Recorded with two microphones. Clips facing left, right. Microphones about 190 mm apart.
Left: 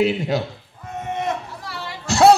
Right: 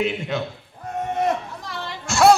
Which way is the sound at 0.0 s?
40° left (ahead or behind).